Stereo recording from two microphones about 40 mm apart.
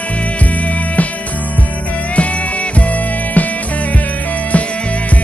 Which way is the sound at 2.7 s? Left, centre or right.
Left.